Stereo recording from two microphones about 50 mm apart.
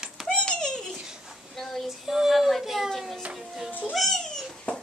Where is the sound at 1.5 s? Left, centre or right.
Centre.